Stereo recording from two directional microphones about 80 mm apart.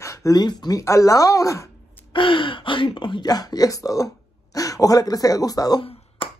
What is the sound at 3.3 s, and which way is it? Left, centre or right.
Speech, left.